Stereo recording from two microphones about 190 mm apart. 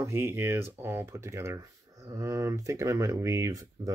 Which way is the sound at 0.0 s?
10° right (ahead or behind).